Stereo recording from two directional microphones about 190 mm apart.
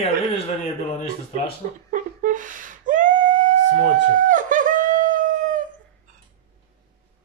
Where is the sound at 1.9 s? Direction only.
45° right (ahead or behind).